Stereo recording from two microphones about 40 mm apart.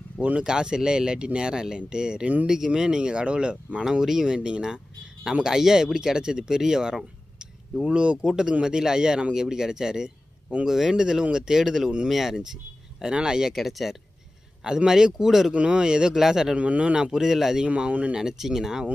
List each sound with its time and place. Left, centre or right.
0.4 s speech: centre
4.0 s speech: centre
7.0 s a sound: centre
8.3 s speech: centre
13.0 s speech: centre
13.6 s speech: centre
14.9 s speech: centre
15.5 s speech: right
16.5 s speech: right
17.1 s speech: centre
17.6 s speech: right
18.1 s speech: centre